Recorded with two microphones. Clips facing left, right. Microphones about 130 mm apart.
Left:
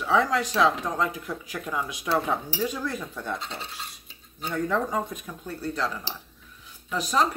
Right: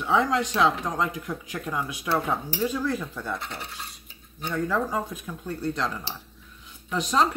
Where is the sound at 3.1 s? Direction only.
15° left (ahead or behind).